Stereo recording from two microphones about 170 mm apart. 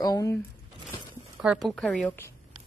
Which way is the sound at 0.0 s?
20° left (ahead or behind).